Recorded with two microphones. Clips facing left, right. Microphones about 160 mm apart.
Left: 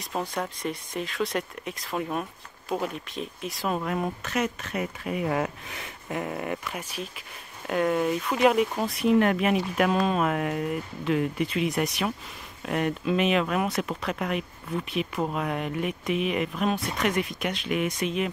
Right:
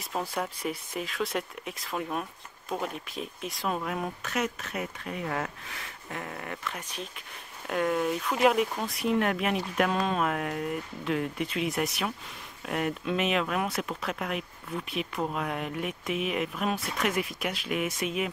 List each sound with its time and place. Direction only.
0.0 s speech: 5° right (ahead or behind)
5.1 s speech: 15° left (ahead or behind); by 18.3 s 5° right (ahead or behind)